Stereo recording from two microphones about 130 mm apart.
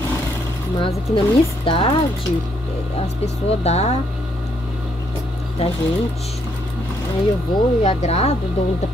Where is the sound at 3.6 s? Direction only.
55° left (ahead or behind).